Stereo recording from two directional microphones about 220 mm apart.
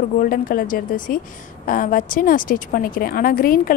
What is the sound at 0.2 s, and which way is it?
A woman's voice, 40° left (ahead or behind).